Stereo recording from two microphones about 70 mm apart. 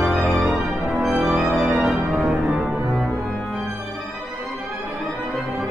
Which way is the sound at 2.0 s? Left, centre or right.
Centre.